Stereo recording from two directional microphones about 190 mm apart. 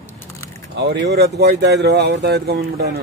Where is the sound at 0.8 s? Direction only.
65° right (ahead or behind).